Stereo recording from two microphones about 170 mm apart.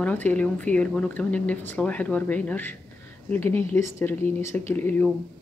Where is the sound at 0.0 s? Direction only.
10° left (ahead or behind).